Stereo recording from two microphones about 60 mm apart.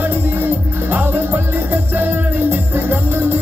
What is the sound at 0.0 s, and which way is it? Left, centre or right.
Music, right.